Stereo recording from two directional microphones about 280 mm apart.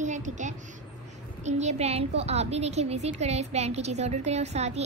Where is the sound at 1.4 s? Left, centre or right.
Right.